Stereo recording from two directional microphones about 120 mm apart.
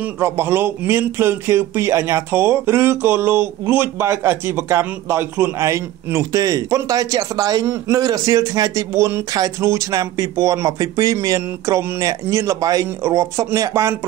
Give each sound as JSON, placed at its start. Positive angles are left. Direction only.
{"t": 0.0, "sound": "speech", "side_deg": -20}